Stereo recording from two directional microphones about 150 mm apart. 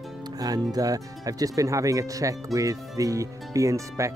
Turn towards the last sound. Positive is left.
turn(degrees=-20)  # may be behind; listen again after turning